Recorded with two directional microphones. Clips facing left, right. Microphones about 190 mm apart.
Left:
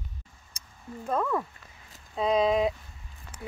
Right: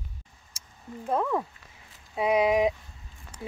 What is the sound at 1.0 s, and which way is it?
Speech, 15° right (ahead or behind).